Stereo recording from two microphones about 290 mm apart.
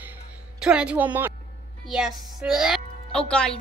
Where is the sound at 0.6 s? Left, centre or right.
Centre.